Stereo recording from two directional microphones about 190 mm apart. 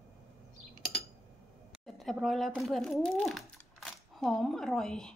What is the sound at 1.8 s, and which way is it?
Speech, centre (ahead or behind).